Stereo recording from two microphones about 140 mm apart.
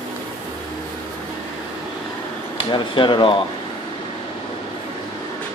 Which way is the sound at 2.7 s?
35° left (ahead or behind).